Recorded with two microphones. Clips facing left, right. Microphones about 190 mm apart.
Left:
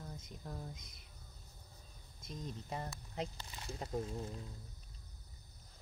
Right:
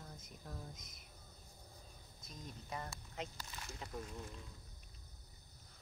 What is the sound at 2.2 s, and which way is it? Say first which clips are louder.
Speech: left 6 dB; 30° left (ahead or behind).